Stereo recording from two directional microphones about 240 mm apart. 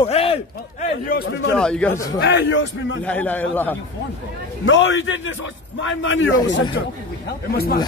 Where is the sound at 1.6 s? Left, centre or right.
Centre.